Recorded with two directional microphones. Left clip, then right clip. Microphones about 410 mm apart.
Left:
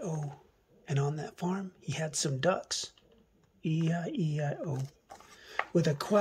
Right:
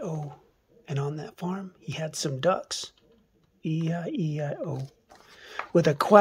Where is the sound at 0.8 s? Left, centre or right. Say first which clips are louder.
Right 2 dB; centre.